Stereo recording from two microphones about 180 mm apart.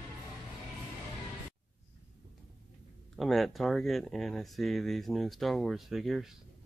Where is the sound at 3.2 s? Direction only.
Centre (ahead or behind).